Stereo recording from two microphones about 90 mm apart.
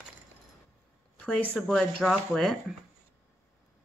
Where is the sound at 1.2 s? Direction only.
10° left (ahead or behind).